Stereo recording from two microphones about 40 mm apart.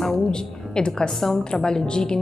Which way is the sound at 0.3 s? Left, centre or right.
Left.